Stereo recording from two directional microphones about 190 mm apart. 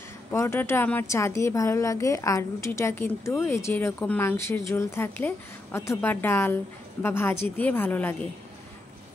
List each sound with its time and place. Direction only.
0.3 s a woman's voice: 15° left (ahead or behind)